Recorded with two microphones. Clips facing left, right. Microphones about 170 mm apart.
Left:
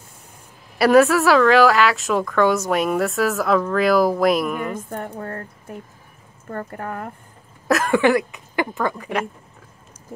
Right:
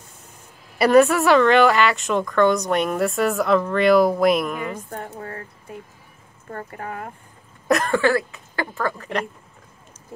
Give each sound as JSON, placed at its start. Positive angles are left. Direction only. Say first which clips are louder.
{"t": 0.7, "sound": "a woman's voice", "louder": "left 1 dB", "side_deg": 0}
{"t": 7.6, "sound": "a sound", "louder": "even", "side_deg": 0}
{"t": 7.9, "sound": "speech", "louder": "left 3 dB", "side_deg": 15}